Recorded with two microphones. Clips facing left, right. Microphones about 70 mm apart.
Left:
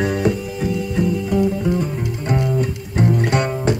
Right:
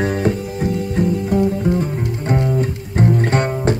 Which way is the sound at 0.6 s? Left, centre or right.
Right.